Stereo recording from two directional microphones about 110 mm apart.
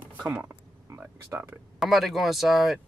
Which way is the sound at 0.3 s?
20° right (ahead or behind).